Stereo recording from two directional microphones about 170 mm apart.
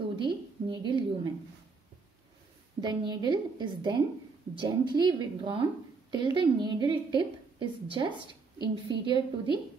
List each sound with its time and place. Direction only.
0.1 s a woman's voice: 30° right (ahead or behind)
2.8 s a woman's voice: 25° right (ahead or behind)